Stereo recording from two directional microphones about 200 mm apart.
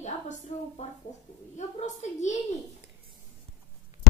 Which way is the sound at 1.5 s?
35° left (ahead or behind).